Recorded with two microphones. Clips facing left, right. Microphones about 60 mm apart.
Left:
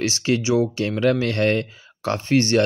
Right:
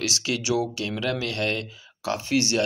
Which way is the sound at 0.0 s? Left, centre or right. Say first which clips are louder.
Left 6 dB; left.